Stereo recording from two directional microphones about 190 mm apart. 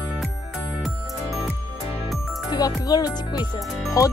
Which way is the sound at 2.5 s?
20° left (ahead or behind).